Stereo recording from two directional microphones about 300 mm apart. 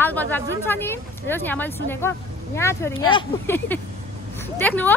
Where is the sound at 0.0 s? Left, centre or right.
Centre.